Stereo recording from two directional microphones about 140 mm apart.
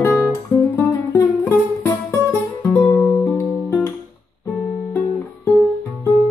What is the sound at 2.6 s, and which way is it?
Music, 10° left (ahead or behind).